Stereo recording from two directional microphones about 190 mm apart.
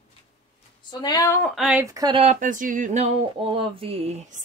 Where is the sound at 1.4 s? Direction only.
Centre (ahead or behind).